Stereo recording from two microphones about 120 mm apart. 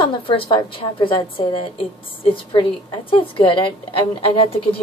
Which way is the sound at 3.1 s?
45° left (ahead or behind).